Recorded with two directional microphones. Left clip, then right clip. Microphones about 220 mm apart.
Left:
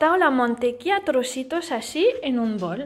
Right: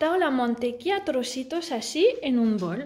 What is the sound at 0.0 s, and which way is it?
A woman's voice, 5° right (ahead or behind).